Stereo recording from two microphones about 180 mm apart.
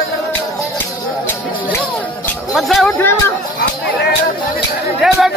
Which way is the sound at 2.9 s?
15° left (ahead or behind).